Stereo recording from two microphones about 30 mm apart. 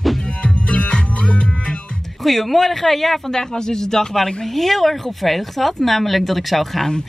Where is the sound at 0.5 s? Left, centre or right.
Left.